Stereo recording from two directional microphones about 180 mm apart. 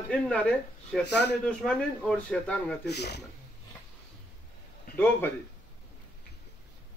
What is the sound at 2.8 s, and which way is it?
Speech, 65° left (ahead or behind).